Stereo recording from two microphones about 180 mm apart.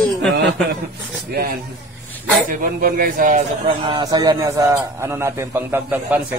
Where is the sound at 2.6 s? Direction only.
50° right (ahead or behind).